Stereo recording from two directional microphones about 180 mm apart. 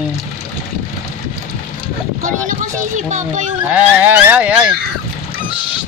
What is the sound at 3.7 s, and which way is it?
Speech, 10° right (ahead or behind).